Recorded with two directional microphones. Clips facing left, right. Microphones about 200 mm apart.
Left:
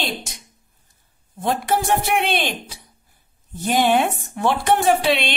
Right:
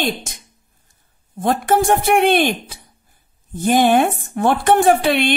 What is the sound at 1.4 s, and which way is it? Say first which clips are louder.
Speech: right 5 dB; 50° right (ahead or behind).